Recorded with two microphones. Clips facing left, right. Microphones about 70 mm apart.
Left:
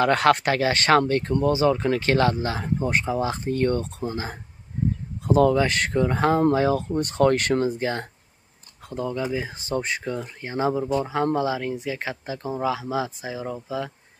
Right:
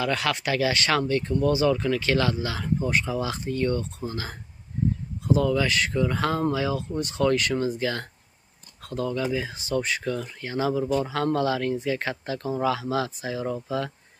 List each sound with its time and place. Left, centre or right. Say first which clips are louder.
0.0 s speech: left 7 dB; left
1.5 s speech: left 2 dB; left
5.2 s speech: left 4 dB; left
6.5 s speech: left 5 dB; left
7.6 s speech: left 2 dB; left; by 13.9 s centre